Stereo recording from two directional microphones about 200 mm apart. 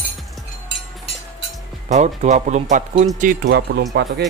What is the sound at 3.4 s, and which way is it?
Speech, 60° right (ahead or behind).